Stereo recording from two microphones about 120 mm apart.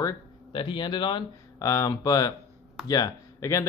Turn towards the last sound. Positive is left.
turn(degrees=25)  # may be behind; listen again after turning